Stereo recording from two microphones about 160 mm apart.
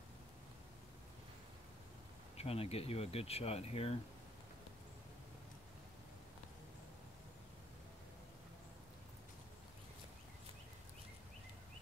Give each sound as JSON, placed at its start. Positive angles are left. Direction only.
{"t": 2.3, "sound": "speech", "side_deg": 40}